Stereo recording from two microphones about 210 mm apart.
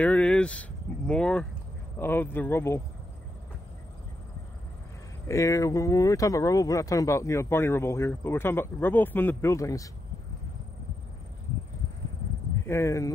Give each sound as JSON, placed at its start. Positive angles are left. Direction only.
{"t": 0.0, "sound": "a sound", "side_deg": 5}
{"t": 2.0, "sound": "speech", "side_deg": 10}
{"t": 5.3, "sound": "speech", "side_deg": 15}
{"t": 12.6, "sound": "speech", "side_deg": 15}